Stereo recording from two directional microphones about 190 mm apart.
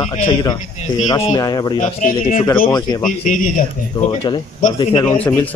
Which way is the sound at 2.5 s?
20° left (ahead or behind).